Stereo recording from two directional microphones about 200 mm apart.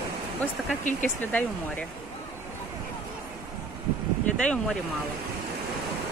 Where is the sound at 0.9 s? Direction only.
40° left (ahead or behind).